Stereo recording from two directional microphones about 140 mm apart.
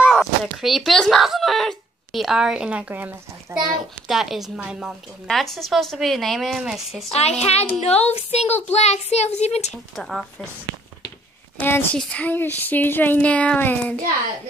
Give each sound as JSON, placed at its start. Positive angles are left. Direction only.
{"t": 0.0, "sound": "a child's voice", "side_deg": -5}
{"t": 4.1, "sound": "a woman's voice", "side_deg": 0}
{"t": 7.1, "sound": "speech", "side_deg": 50}
{"t": 9.9, "sound": "a woman's voice", "side_deg": 0}
{"t": 11.6, "sound": "speech", "side_deg": 15}